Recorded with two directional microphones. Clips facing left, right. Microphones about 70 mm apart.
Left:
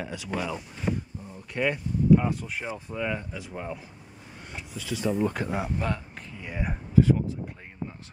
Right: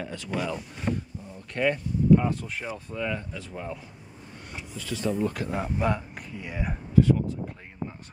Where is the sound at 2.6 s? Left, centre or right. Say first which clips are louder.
Left 1 dB; centre.